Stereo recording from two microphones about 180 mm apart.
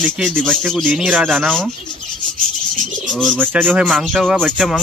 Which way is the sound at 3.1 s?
5° left (ahead or behind).